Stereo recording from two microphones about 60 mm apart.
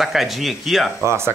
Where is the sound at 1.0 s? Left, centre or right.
Right.